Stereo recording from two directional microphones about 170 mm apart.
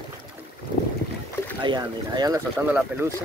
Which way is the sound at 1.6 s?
25° right (ahead or behind).